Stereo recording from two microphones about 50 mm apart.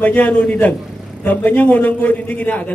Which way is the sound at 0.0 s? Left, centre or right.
Left.